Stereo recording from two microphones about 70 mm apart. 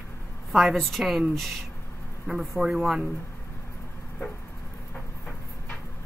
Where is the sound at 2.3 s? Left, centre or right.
Centre.